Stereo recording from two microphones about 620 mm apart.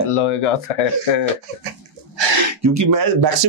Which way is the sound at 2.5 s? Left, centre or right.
Right.